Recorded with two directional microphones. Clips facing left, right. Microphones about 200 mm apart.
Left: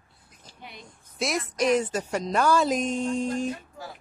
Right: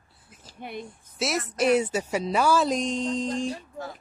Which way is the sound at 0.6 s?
60° right (ahead or behind).